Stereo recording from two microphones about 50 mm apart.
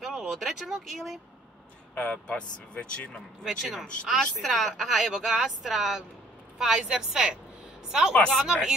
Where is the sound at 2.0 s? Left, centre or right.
Left.